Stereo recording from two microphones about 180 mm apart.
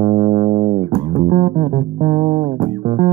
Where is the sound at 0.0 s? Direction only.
40° right (ahead or behind).